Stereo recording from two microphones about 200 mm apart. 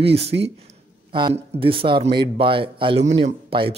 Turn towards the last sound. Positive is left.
turn(degrees=-30)  # may be behind; listen again after turning